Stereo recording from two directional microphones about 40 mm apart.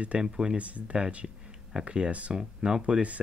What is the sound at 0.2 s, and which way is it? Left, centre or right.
Speech, right.